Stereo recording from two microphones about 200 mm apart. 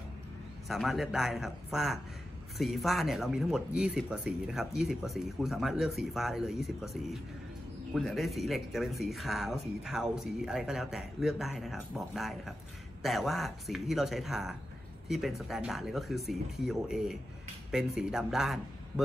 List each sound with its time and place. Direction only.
0.7 s a man's voice: centre (ahead or behind)